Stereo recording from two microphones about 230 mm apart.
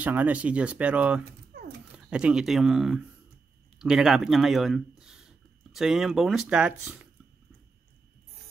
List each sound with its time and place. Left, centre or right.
0.0 s speech: centre
1.5 s a sound: right
2.0 s speech: centre